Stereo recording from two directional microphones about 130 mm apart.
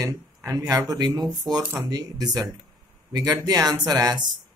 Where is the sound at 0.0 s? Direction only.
20° right (ahead or behind).